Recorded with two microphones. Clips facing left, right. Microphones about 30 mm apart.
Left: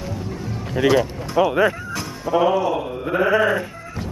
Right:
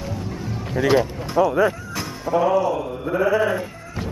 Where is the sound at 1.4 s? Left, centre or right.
Left.